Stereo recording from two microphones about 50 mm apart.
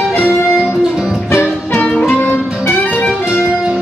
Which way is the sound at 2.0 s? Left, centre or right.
Left.